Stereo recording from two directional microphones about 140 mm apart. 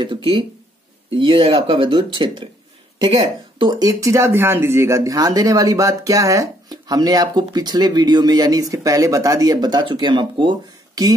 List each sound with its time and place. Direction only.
0.0 s speech: 35° right (ahead or behind)
4.0 s speech: 20° right (ahead or behind); by 10.5 s 35° right (ahead or behind)